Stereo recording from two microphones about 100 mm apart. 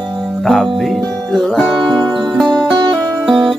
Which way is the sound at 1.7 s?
45° right (ahead or behind).